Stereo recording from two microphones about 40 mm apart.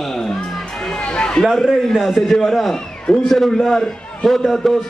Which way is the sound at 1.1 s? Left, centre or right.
Left.